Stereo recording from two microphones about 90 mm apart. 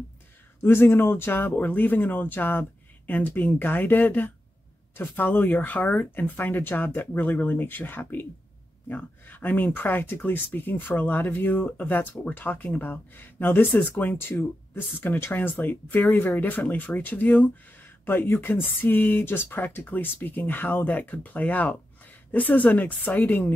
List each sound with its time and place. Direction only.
0.6 s speech: 25° left (ahead or behind)